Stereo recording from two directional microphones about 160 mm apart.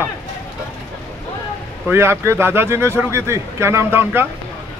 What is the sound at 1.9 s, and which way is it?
A man's voice, 15° right (ahead or behind).